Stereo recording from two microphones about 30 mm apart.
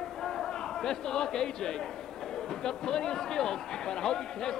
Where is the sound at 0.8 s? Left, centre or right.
Left.